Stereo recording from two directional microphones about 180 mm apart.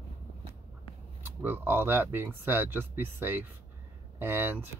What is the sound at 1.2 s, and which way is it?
Speech, 10° right (ahead or behind).